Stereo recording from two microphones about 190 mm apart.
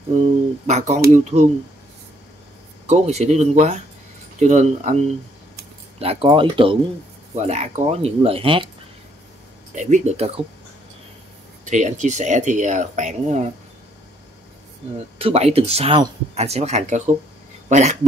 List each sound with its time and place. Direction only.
0.7 s speech: 35° right (ahead or behind)
2.9 s speech: 35° right (ahead or behind)
9.8 s speech: 40° right (ahead or behind)
11.6 s speech: 40° right (ahead or behind)
15.1 s speech: 30° right (ahead or behind)